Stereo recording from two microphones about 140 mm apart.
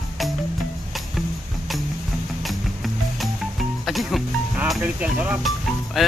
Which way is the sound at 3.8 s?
Centre (ahead or behind).